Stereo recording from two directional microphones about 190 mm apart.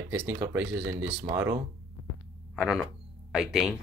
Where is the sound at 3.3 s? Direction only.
Centre (ahead or behind).